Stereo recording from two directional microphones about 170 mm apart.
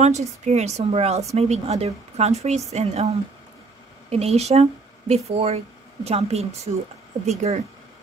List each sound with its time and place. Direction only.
0.0 s a woman's voice: 40° right (ahead or behind)